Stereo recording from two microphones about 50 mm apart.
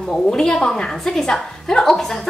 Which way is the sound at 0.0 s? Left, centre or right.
Centre.